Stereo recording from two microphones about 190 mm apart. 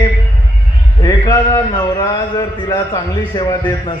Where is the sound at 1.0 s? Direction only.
20° left (ahead or behind).